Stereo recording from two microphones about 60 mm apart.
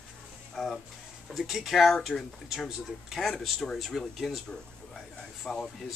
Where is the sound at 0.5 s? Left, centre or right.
Centre.